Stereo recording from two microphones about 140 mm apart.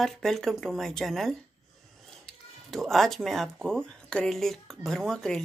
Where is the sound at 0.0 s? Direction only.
Centre (ahead or behind).